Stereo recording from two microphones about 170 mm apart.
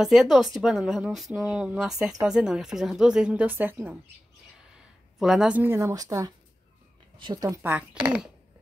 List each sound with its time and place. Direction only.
0.0 s speech: centre (ahead or behind)
5.2 s speech: 5° right (ahead or behind)